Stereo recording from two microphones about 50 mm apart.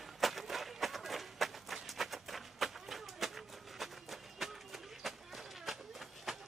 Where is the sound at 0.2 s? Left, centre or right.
Centre.